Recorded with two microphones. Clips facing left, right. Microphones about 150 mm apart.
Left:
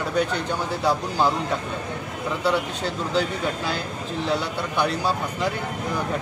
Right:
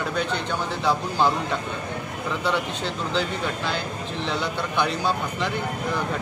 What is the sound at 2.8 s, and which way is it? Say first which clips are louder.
Speech: left 2 dB; 40° left (ahead or behind).